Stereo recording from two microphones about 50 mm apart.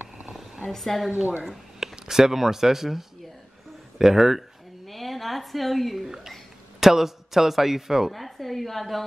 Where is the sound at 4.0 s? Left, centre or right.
Centre.